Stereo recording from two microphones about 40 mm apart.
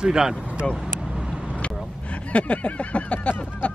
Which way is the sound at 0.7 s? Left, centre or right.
Centre.